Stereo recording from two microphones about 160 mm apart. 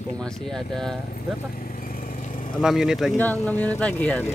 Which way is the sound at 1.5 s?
60° left (ahead or behind).